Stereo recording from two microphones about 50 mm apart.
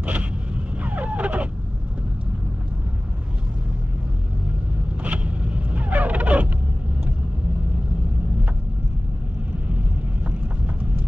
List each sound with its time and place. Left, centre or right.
0.0 s vehicle: right
0.8 s a sound: right
5.0 s vehicle: right